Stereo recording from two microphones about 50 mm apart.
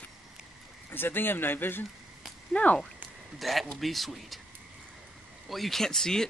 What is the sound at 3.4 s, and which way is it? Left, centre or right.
Speech, centre.